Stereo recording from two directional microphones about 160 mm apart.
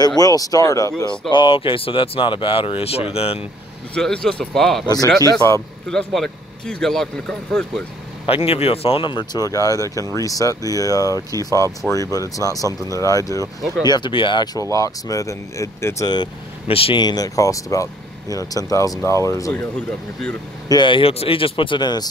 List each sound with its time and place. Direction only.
0.0 s speech: 25° left (ahead or behind)
1.3 s speech: 30° left (ahead or behind)
3.9 s speech: 5° left (ahead or behind)
4.8 s a man's voice: 25° left (ahead or behind)
5.9 s speech: 5° left (ahead or behind)
8.3 s speech: 40° left (ahead or behind); by 19.7 s 20° left (ahead or behind)
20.6 s speech: 30° left (ahead or behind)